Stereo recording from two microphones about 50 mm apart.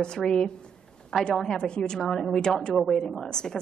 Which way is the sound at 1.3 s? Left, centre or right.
Centre.